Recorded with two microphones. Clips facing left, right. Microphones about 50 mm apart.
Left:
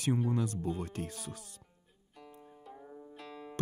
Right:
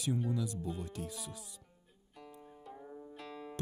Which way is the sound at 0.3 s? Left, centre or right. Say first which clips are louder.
Left 4 dB; left.